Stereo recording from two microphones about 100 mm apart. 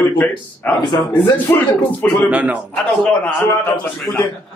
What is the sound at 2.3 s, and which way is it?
Speech, 15° right (ahead or behind).